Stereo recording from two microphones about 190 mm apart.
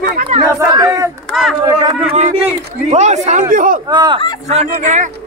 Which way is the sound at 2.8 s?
35° right (ahead or behind).